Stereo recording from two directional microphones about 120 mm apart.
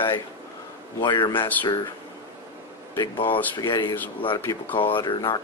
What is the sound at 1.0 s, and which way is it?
Speech, 40° left (ahead or behind).